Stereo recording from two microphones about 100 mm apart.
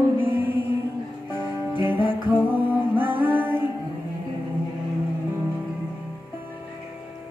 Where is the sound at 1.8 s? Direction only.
20° right (ahead or behind).